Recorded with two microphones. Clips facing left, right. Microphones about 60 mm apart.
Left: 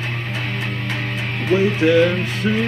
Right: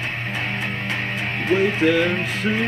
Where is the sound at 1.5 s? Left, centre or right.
Centre.